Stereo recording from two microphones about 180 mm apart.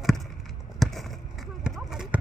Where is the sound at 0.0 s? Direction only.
Centre (ahead or behind).